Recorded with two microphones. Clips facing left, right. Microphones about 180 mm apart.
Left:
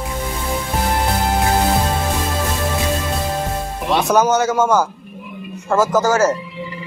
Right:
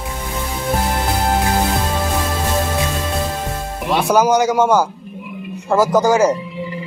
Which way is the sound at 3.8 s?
10° right (ahead or behind).